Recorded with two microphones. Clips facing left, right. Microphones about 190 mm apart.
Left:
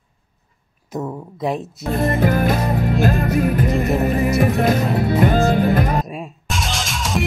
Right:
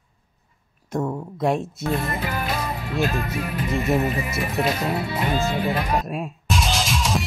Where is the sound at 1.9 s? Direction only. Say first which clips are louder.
Left 8 dB; 50° left (ahead or behind).